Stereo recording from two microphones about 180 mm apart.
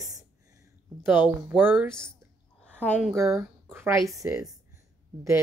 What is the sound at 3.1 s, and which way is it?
Speech, 15° right (ahead or behind).